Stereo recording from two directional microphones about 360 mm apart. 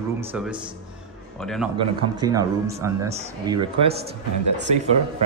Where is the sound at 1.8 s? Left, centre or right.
Centre.